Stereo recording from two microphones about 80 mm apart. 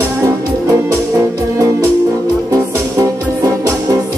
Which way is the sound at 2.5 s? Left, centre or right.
Right.